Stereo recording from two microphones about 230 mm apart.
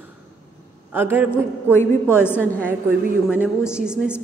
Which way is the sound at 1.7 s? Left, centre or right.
Centre.